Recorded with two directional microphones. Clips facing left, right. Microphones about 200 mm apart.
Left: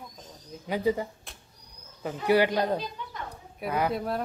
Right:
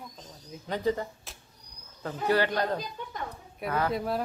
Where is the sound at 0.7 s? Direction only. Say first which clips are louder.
Left 2 dB; 10° left (ahead or behind).